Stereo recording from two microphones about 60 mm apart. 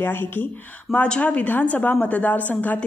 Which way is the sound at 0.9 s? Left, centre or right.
Centre.